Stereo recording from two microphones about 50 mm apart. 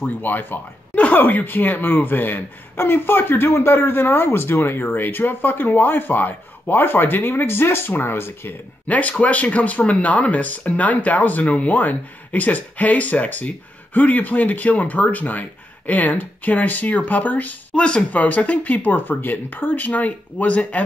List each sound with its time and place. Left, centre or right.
0.0 s speech: left
2.8 s speech: left
8.8 s speech: left
17.7 s speech: centre
18.1 s speech: left